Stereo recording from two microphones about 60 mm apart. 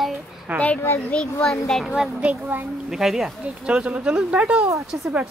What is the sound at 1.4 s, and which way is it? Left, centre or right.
Speech, centre.